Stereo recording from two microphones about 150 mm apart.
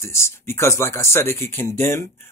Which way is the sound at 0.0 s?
20° left (ahead or behind).